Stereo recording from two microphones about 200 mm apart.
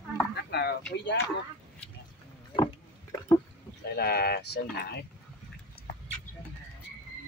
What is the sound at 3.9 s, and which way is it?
Speech, 55° left (ahead or behind).